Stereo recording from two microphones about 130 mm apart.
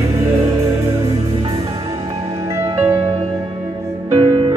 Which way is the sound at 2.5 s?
25° right (ahead or behind).